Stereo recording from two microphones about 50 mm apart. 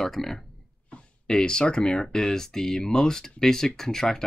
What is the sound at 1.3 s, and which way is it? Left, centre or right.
Speech, centre.